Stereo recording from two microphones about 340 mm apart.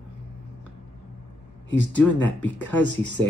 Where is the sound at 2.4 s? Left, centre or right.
Left.